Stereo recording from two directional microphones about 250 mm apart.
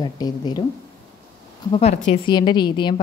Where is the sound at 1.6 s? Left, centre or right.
Left.